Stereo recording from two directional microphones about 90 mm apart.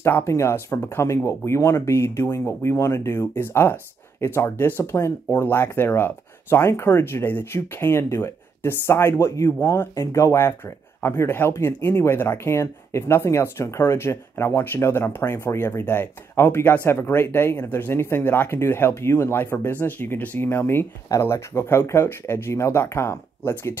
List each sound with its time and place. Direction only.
0.0 s speech: 30° left (ahead or behind)